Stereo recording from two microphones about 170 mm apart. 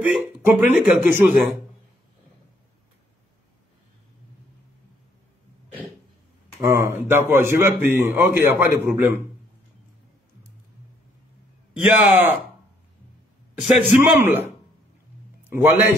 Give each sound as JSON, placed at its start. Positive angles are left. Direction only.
{"t": 0.0, "sound": "a man's voice", "side_deg": -10}
{"t": 6.7, "sound": "a man's voice", "side_deg": -15}
{"t": 11.8, "sound": "a man's voice", "side_deg": -10}
{"t": 13.7, "sound": "a man's voice", "side_deg": -5}
{"t": 15.4, "sound": "a man's voice", "side_deg": -10}